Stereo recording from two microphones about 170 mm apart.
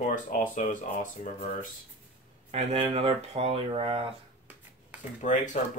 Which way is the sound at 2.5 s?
35° right (ahead or behind).